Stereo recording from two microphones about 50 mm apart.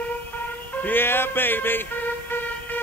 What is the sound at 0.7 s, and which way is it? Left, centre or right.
Music, left.